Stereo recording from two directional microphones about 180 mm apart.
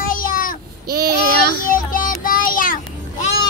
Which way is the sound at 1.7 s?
50° left (ahead or behind).